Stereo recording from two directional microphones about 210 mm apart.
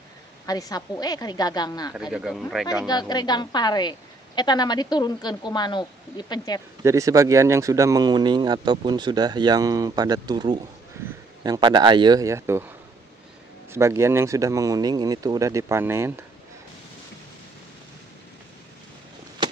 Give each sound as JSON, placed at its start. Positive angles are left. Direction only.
{"t": 0.5, "sound": "a woman's voice", "side_deg": 15}
{"t": 2.0, "sound": "speech", "side_deg": -5}
{"t": 2.9, "sound": "a woman's voice", "side_deg": 20}
{"t": 6.8, "sound": "speech", "side_deg": -15}